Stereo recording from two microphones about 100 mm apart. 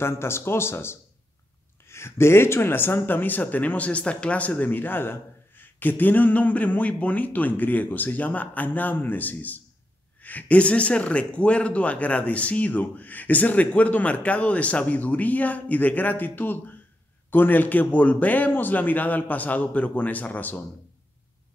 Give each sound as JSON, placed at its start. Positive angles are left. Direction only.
{"t": 0.0, "sound": "speech", "side_deg": 25}